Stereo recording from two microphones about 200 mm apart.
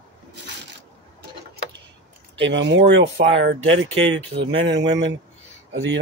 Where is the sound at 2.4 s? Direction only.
65° right (ahead or behind).